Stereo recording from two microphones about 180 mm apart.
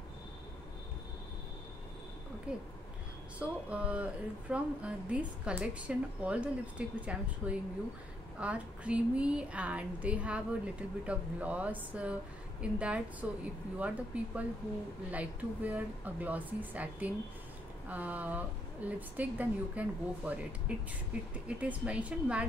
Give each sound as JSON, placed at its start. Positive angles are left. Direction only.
{"t": 2.5, "sound": "a woman's voice", "side_deg": -5}